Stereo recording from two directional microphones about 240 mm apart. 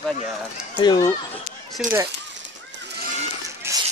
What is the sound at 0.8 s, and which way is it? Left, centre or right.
Speech, centre.